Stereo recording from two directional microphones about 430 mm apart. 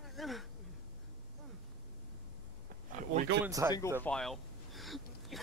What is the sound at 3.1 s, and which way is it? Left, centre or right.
Speech, centre.